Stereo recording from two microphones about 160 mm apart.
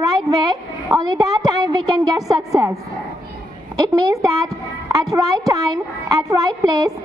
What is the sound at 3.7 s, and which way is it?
A woman's voice, 25° right (ahead or behind).